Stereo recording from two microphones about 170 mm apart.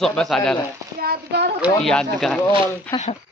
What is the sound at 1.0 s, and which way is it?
Speech, 75° right (ahead or behind).